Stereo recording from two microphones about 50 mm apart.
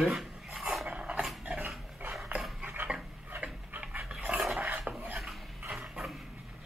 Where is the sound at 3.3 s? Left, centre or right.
Right.